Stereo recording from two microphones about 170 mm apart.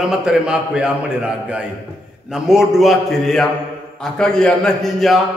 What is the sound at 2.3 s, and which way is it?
A man's voice, 5° right (ahead or behind).